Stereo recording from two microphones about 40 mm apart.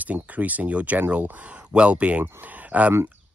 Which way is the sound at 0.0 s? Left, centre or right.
Right.